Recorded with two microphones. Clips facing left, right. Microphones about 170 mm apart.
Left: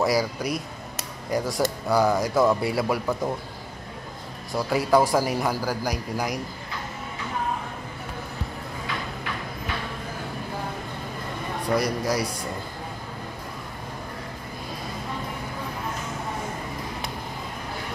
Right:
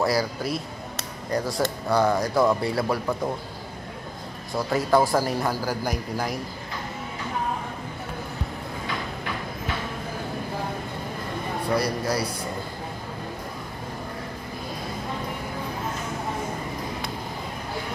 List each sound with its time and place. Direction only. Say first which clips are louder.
0.0 s speech: left 1 dB; centre (ahead or behind)
1.6 s speech: left 1 dB; centre (ahead or behind)
4.6 s a man's voice: left 1 dB; 5° left (ahead or behind)
11.7 s speech: left 1 dB; 20° left (ahead or behind)